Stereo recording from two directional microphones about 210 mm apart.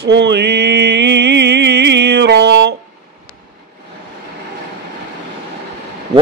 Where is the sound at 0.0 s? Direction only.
55° right (ahead or behind).